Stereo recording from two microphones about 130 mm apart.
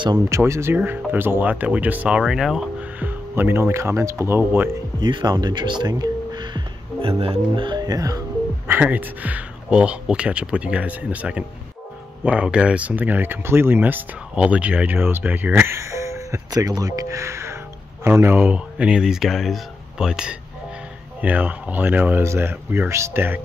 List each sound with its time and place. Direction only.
0.3 s speech: 20° right (ahead or behind)
5.0 s speech: 30° right (ahead or behind)
8.6 s speech: 15° right (ahead or behind)